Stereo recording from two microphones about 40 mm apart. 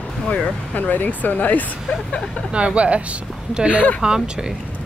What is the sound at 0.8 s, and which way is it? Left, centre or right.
Speech, left.